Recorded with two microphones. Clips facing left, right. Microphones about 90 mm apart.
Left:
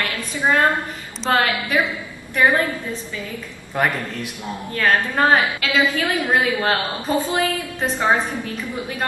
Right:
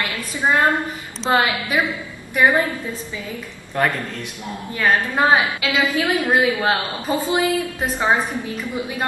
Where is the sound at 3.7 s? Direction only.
10° left (ahead or behind).